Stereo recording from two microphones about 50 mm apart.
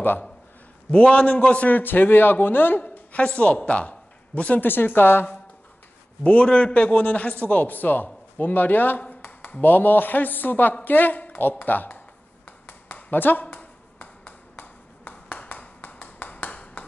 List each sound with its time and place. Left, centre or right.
1.0 s a man's voice: left
2.8 s a woman's voice: left
4.6 s speech: left
6.2 s a man's voice: left
12.4 s a sound: left